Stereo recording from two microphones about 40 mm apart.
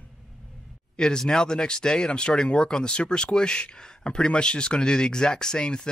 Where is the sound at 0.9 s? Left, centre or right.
Centre.